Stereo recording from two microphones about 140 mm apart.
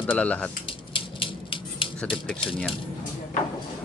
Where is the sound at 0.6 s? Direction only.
40° left (ahead or behind).